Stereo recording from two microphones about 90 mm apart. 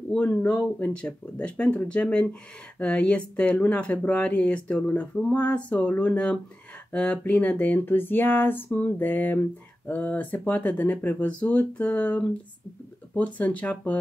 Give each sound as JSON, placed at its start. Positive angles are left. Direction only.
{"t": 0.1, "sound": "speech", "side_deg": 20}